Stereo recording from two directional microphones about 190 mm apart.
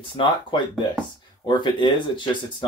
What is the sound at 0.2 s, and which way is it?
Speech, 25° left (ahead or behind).